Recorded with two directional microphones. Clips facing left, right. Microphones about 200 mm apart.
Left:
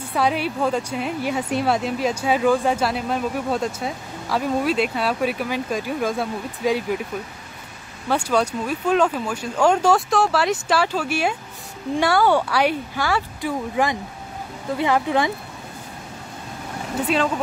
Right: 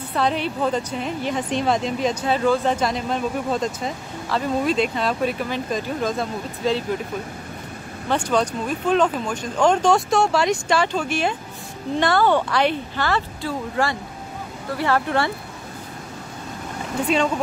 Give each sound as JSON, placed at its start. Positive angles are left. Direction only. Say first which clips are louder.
{"t": 0.1, "sound": "speech", "louder": "left 1 dB", "side_deg": 10}
{"t": 8.1, "sound": "speech", "louder": "even", "side_deg": 10}